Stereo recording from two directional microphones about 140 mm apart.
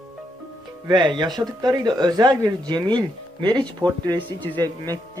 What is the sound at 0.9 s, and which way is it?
Speech, 30° right (ahead or behind).